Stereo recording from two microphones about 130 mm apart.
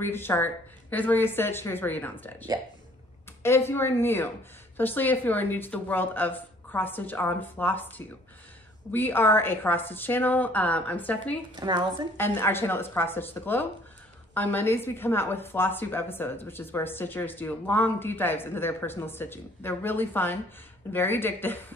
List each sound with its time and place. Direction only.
0.0 s a woman's voice: 15° left (ahead or behind)
3.4 s a woman's voice: 20° left (ahead or behind)
8.9 s a woman's voice: 15° left (ahead or behind)
11.6 s a woman's voice: 35° right (ahead or behind)
12.2 s a woman's voice: 15° left (ahead or behind)